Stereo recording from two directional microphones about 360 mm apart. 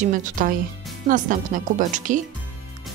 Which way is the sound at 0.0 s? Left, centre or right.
Right.